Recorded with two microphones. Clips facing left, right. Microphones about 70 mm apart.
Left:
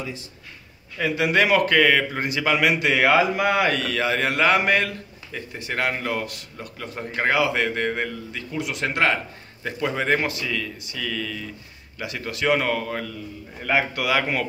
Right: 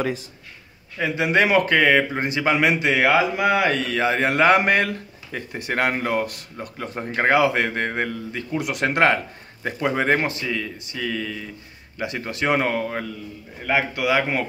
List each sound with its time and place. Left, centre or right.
0.9 s speech: right